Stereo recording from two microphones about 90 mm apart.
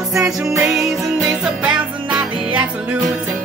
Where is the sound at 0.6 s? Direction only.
Centre (ahead or behind).